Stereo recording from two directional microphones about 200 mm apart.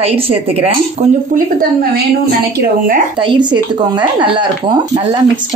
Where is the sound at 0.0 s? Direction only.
30° right (ahead or behind).